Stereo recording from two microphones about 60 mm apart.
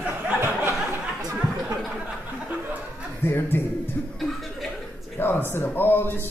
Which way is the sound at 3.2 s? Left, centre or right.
Left.